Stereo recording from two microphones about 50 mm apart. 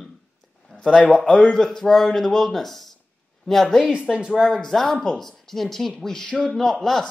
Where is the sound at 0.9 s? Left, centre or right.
Centre.